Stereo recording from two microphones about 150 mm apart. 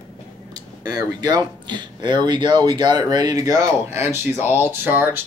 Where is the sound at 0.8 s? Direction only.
25° right (ahead or behind).